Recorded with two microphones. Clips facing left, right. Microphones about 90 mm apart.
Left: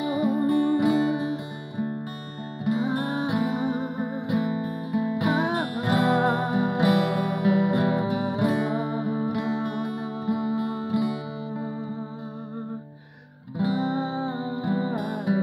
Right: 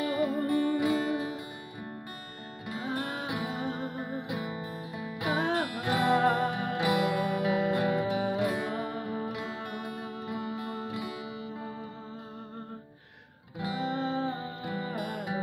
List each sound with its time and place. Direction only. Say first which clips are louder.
0.0 s music: left 5 dB; 20° left (ahead or behind)
5.8 s music: left 4 dB; 30° left (ahead or behind)
6.8 s music: left 3 dB; 30° left (ahead or behind)
13.6 s music: left 6 dB; 20° left (ahead or behind)